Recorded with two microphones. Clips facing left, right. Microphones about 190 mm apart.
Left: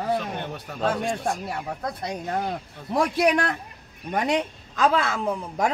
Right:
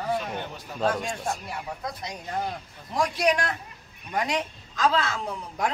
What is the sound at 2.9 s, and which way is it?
A woman's voice, 55° left (ahead or behind).